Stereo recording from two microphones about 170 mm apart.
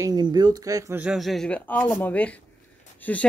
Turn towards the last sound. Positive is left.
turn(degrees=10)  # may be behind; listen again after turning